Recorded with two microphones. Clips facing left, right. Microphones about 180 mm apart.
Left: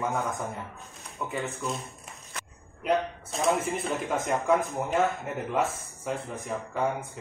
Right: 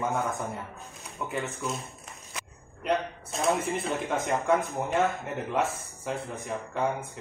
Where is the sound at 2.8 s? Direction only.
Centre (ahead or behind).